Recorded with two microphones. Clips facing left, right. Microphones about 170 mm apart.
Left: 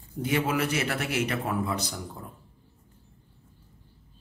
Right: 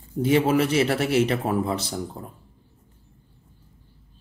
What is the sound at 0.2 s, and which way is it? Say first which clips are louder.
Speech: right 7 dB; 30° right (ahead or behind).